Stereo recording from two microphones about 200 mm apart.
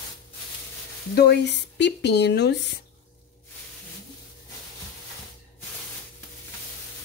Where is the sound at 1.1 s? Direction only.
55° left (ahead or behind).